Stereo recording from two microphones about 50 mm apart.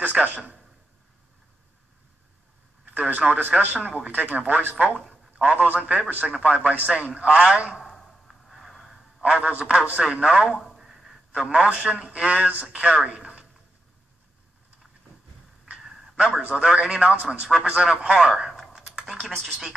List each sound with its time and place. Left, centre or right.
0.0 s speech: right
2.9 s speech: right
5.0 s a man's voice: right
7.8 s a sound: centre
9.2 s a man's voice: right
10.6 s a sound: centre
11.3 s a man's voice: right
16.2 s a man's voice: right
18.8 s computer keyboard: centre